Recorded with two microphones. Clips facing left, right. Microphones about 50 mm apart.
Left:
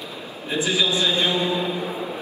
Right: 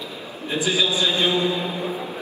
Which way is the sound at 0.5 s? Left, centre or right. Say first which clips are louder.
Even; left.